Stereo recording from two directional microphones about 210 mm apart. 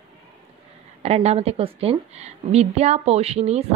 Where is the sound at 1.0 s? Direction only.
30° right (ahead or behind).